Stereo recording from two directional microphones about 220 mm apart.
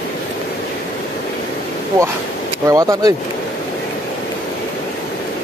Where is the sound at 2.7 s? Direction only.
15° right (ahead or behind).